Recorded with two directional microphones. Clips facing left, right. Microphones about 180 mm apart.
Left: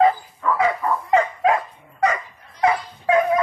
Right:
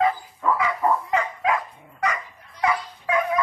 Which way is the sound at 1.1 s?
30° left (ahead or behind).